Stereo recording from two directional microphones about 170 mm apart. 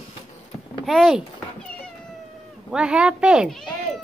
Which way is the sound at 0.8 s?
Centre (ahead or behind).